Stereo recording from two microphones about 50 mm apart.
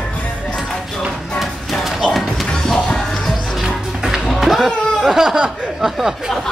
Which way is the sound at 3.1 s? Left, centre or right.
Centre.